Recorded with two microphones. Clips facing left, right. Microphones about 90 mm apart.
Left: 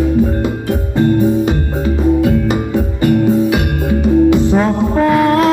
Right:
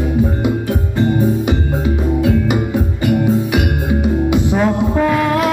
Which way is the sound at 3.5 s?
15° right (ahead or behind).